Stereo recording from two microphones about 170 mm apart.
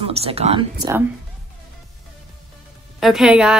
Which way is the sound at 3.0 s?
Centre (ahead or behind).